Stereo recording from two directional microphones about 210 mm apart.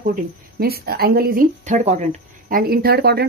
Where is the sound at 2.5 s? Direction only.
45° right (ahead or behind).